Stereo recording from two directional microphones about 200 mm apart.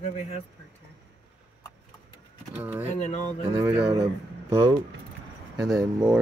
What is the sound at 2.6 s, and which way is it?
Speech, 10° right (ahead or behind).